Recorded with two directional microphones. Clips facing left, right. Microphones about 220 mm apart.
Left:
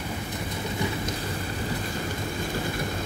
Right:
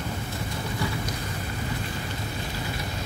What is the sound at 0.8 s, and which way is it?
Rain, 20° left (ahead or behind).